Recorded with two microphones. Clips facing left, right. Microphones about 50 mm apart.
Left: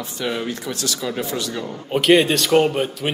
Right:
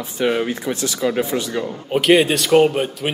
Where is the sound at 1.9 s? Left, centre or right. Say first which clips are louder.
Right 1 dB; centre.